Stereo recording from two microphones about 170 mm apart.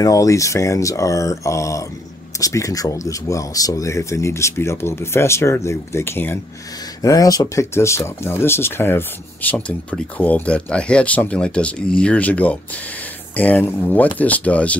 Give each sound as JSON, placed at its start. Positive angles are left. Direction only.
{"t": 0.0, "sound": "speech", "side_deg": 20}